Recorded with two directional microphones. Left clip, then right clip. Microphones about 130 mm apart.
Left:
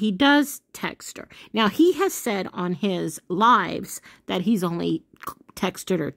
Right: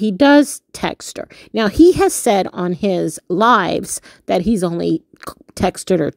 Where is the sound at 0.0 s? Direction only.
35° right (ahead or behind).